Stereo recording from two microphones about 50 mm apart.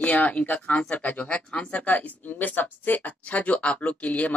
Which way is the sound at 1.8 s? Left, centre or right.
Left.